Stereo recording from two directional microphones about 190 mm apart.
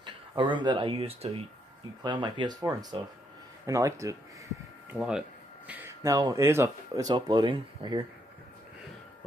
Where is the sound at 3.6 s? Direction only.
15° right (ahead or behind).